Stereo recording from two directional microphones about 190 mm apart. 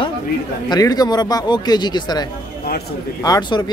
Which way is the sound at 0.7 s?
20° left (ahead or behind).